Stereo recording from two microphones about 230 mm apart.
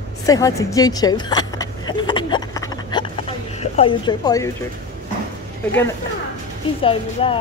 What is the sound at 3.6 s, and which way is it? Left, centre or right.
Speech, left.